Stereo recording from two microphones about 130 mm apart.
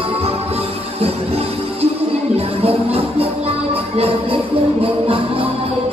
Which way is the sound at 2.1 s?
50° right (ahead or behind).